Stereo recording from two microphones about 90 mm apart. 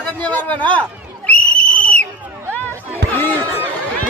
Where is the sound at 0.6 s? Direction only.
15° left (ahead or behind).